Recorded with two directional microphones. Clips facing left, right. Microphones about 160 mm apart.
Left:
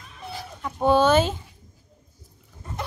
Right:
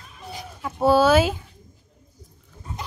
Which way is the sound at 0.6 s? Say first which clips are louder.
Right 2 dB; 5° right (ahead or behind).